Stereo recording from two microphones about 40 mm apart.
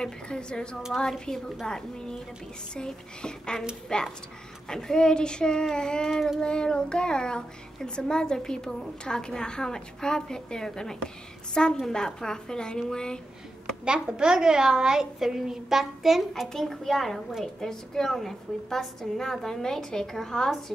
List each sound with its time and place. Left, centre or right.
0.0 s a child's voice: left
0.9 s a woman's voice: centre
13.8 s a woman's voice: centre
16.5 s a woman's voice: centre